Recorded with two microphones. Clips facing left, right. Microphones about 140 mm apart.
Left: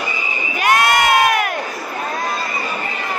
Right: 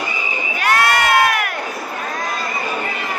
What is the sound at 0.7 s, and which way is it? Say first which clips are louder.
Crowd: left 2 dB; 20° left (ahead or behind).